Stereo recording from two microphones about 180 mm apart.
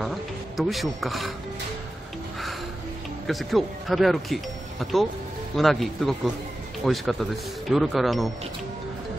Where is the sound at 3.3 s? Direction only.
Centre (ahead or behind).